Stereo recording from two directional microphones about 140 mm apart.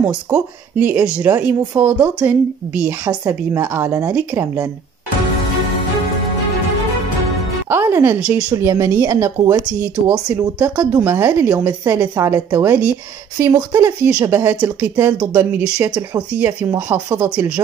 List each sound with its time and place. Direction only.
0.0 s speech: 10° right (ahead or behind)
2.0 s a woman's voice: 25° right (ahead or behind)
7.7 s speech: 15° right (ahead or behind)
8.5 s a woman's voice: 20° right (ahead or behind)
13.7 s a woman's voice: 25° right (ahead or behind)